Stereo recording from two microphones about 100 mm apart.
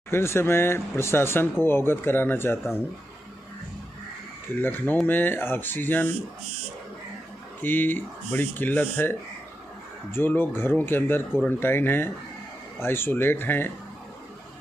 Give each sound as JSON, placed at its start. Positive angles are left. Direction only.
{"t": 0.1, "sound": "speech", "side_deg": 25}
{"t": 4.6, "sound": "speech", "side_deg": 20}
{"t": 7.6, "sound": "speech", "side_deg": 20}
{"t": 10.1, "sound": "speech", "side_deg": 20}